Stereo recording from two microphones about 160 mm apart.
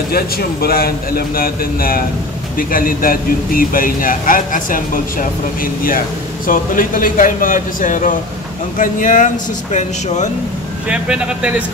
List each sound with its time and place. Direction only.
0.1 s speech: 70° left (ahead or behind); by 10.3 s 50° left (ahead or behind)
10.9 s speech: 5° right (ahead or behind)